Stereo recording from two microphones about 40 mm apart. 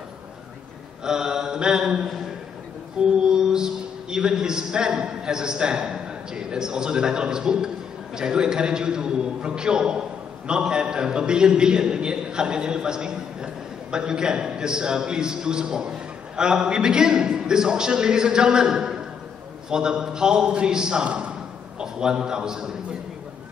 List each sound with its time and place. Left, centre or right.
1.0 s mantra: centre
3.3 s a man's voice: centre
21.7 s a man's voice: centre